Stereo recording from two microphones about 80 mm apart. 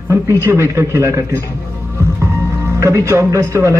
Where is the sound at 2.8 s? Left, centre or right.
Right.